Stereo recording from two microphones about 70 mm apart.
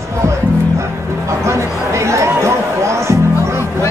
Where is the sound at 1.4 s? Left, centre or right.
Right.